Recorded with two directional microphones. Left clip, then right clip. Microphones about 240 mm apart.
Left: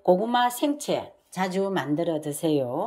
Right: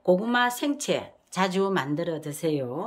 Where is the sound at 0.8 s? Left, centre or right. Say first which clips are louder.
Even; right.